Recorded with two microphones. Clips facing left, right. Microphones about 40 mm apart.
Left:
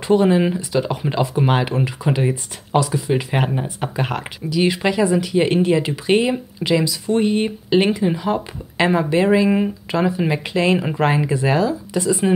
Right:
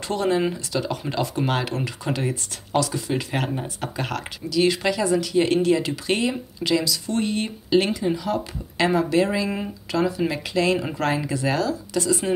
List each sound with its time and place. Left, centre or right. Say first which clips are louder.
0.1 s speech: left 7 dB; centre